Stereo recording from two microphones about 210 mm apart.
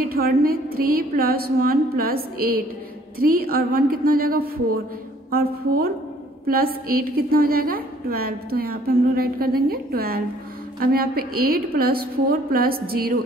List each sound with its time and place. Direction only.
0.1 s a woman's voice: 45° right (ahead or behind)